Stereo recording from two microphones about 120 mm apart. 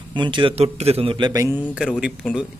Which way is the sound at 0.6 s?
60° right (ahead or behind).